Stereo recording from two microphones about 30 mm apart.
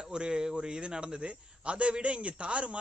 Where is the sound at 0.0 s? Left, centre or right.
Right.